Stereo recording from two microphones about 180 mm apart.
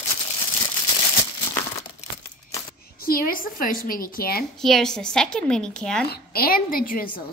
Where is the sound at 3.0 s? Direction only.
55° left (ahead or behind).